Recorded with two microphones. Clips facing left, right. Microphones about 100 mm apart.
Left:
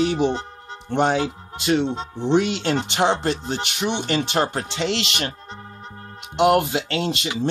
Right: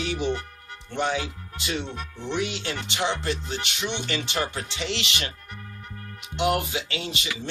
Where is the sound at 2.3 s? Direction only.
65° left (ahead or behind).